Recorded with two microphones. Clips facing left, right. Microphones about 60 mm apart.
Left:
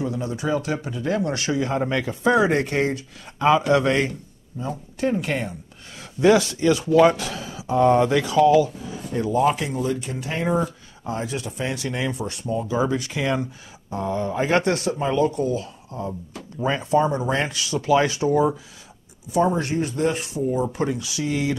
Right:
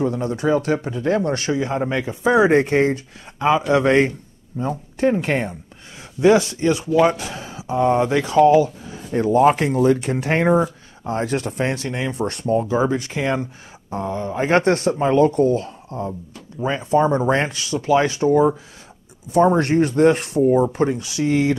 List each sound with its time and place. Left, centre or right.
0.0 s speech: right
9.2 s speech: right
10.5 s speech: right
12.3 s speech: right
16.1 s speech: centre
16.6 s speech: right
19.3 s speech: right
20.6 s speech: right